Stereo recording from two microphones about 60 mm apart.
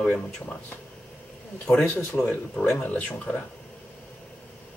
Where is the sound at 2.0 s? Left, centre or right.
Left.